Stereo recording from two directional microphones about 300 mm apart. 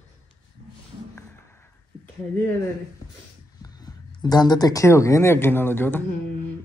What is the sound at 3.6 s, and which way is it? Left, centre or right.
Speech, centre.